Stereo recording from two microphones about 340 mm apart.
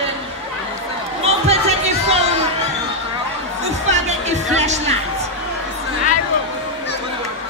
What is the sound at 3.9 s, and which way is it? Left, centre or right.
Music, centre.